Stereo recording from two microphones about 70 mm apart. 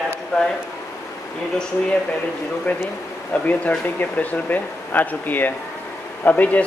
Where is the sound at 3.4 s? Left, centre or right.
Left.